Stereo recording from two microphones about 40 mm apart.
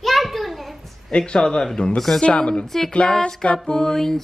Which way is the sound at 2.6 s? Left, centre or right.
Centre.